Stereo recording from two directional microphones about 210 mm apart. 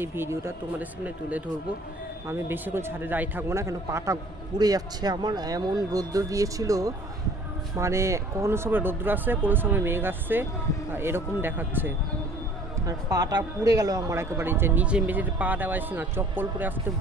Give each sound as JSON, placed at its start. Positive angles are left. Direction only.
{"t": 0.0, "sound": "speech", "side_deg": -10}